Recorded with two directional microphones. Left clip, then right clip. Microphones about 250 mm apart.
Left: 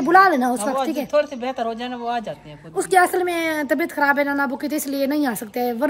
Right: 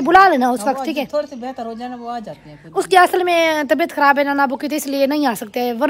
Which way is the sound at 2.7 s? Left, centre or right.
Centre.